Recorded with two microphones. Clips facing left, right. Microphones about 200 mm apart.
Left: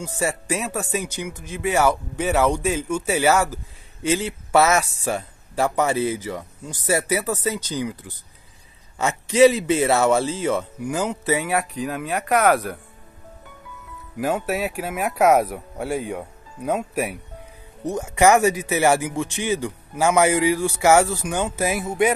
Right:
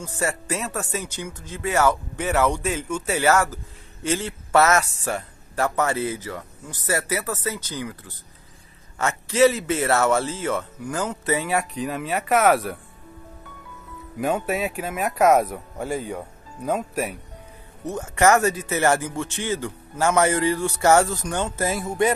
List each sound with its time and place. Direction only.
0.0 s speech: 15° left (ahead or behind)
14.1 s speech: 5° left (ahead or behind)